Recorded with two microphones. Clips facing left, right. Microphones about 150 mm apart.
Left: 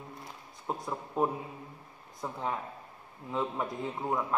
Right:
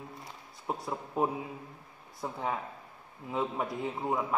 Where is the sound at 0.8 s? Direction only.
10° right (ahead or behind).